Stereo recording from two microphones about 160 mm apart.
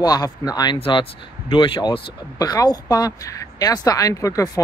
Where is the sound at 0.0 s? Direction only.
25° left (ahead or behind).